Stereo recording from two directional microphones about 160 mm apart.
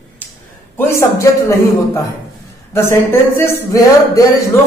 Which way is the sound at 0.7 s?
15° left (ahead or behind).